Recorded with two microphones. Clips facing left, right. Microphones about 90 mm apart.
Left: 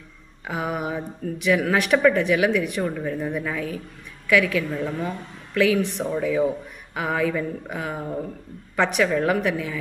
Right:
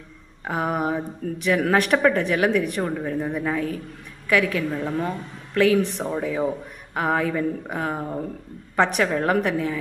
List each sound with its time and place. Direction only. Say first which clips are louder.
0.5 s speech: right 3 dB; 40° right (ahead or behind)
6.0 s speech: left 2 dB; 25° right (ahead or behind)